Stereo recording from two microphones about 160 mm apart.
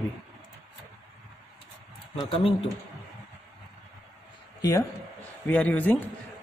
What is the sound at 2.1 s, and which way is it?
Speech, 35° left (ahead or behind).